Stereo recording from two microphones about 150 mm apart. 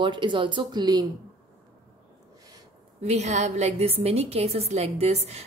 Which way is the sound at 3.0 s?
50° right (ahead or behind).